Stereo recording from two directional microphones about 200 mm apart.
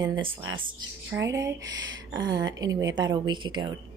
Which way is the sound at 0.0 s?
20° right (ahead or behind).